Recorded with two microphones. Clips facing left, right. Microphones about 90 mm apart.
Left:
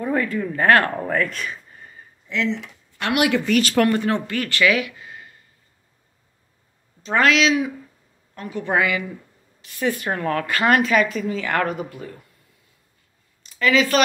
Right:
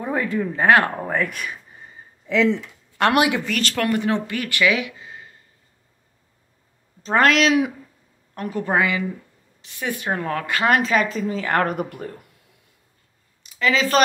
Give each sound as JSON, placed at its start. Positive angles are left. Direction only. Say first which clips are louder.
{"t": 0.0, "sound": "speech", "louder": "left 1 dB", "side_deg": -20}
{"t": 3.2, "sound": "speech", "louder": "left 4 dB", "side_deg": -20}
{"t": 3.6, "sound": "speech", "louder": "left 5 dB", "side_deg": 15}
{"t": 3.9, "sound": "speech", "louder": "even", "side_deg": -15}
{"t": 7.0, "sound": "a sound", "louder": "right 2 dB", "side_deg": -35}
{"t": 7.2, "sound": "speech", "louder": "even", "side_deg": -55}
{"t": 8.4, "sound": "a woman's voice", "louder": "right 2 dB", "side_deg": -40}
{"t": 8.7, "sound": "speech", "louder": "even", "side_deg": -25}
{"t": 9.8, "sound": "speech", "louder": "left 2 dB", "side_deg": -15}
{"t": 11.7, "sound": "speech", "louder": "right 3 dB", "side_deg": -55}
{"t": 13.4, "sound": "a sound", "louder": "left 2 dB", "side_deg": -25}